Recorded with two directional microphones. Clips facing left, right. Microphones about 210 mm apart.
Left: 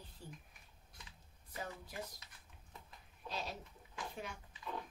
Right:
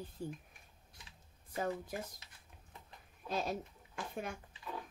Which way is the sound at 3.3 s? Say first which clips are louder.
Right 8 dB; 50° right (ahead or behind).